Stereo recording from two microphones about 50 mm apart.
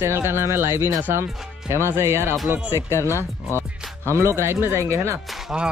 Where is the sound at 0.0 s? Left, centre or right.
Right.